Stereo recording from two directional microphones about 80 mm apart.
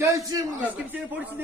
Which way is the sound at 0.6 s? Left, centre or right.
Right.